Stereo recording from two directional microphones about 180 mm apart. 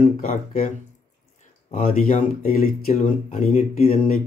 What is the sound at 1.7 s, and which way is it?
Speech, 45° left (ahead or behind).